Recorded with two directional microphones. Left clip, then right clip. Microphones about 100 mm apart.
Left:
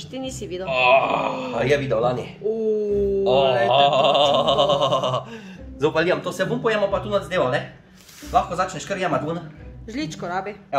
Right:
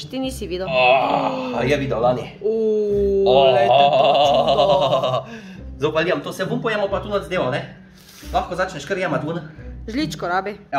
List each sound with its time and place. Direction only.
0.1 s speech: 35° right (ahead or behind)
0.7 s speech: 20° left (ahead or behind)
1.5 s speech: 10° left (ahead or behind)
2.5 s a sound: 25° right (ahead or behind)
3.3 s mantra: 5° left (ahead or behind)
3.6 s speech: 10° left (ahead or behind); by 9.4 s 30° left (ahead or behind)
9.8 s speech: 45° right (ahead or behind)